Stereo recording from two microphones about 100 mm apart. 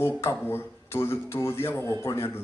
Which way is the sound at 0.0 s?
25° left (ahead or behind).